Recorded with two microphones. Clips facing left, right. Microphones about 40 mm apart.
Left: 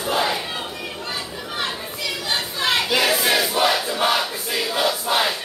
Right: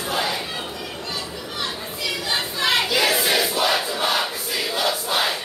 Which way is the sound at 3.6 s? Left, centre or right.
Left.